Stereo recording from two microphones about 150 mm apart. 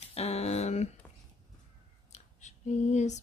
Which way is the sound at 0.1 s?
45° left (ahead or behind).